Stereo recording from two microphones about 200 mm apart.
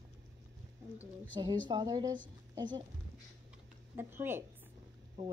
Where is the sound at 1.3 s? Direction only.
20° right (ahead or behind).